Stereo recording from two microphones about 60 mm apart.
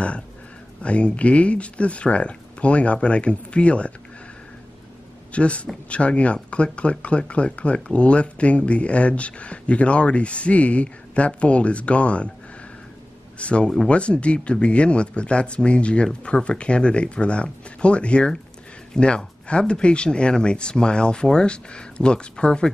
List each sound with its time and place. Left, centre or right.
0.8 s speech: left
5.3 s speech: left
13.4 s speech: centre